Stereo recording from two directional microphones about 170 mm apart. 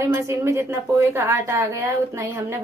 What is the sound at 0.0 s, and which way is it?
A woman's voice, 15° right (ahead or behind).